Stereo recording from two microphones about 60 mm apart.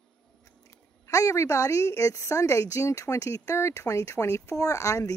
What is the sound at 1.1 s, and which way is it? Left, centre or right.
Speech, left.